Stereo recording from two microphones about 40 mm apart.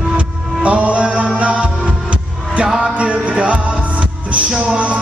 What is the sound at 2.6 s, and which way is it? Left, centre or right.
Music, centre.